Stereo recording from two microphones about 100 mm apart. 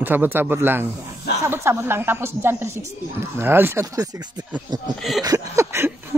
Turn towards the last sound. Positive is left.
turn(degrees=-40)  # may be behind; listen again after turning